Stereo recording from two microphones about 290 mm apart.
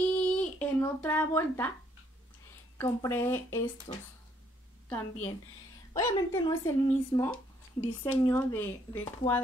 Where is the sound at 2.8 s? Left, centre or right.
Centre.